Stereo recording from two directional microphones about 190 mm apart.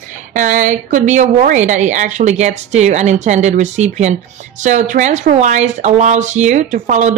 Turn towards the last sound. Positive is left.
turn(degrees=-40)  # may be behind; listen again after turning